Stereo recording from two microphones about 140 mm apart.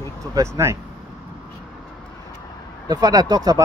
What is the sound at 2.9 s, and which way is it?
Speech, 30° right (ahead or behind).